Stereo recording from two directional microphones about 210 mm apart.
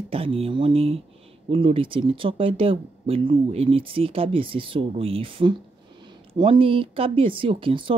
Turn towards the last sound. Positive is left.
turn(degrees=-25)  # may be behind; listen again after turning